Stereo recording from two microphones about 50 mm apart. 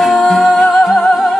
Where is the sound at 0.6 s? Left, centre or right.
Centre.